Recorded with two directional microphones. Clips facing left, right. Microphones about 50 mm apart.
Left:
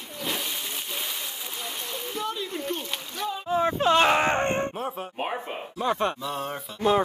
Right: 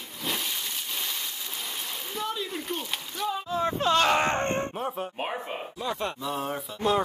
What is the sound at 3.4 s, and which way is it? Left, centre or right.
Speech, left.